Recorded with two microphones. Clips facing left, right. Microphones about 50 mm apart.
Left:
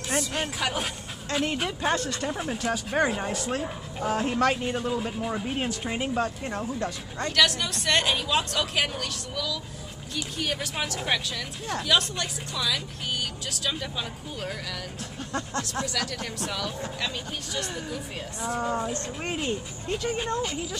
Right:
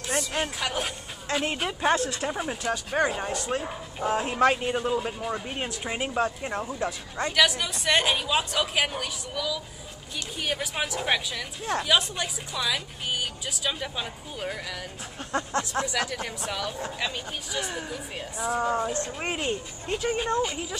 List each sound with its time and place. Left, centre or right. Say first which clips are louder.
0.0 s music: even; centre
1.4 s speech: even; centre
6.0 s speech: right 2 dB; centre
15.1 s speech: right 3 dB; right
15.6 s speech: right 2 dB; centre